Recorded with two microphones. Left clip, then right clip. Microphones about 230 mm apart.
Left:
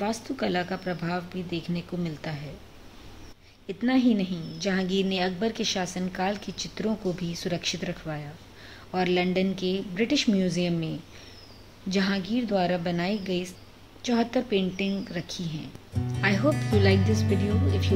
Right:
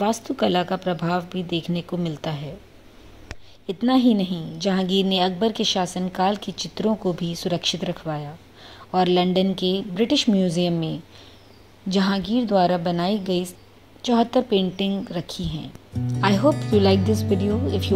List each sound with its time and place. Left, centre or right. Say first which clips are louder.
0.0 s a woman's voice: right 7 dB; right
3.6 s a woman's voice: right 5 dB; right
16.4 s speech: right 6 dB; centre
16.8 s a woman's voice: right 5 dB; right
17.4 s speech: right 5 dB; centre